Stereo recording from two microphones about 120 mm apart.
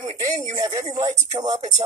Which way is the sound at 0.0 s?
30° right (ahead or behind).